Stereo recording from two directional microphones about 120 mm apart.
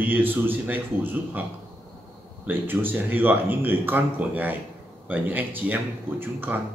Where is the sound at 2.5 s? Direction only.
15° right (ahead or behind).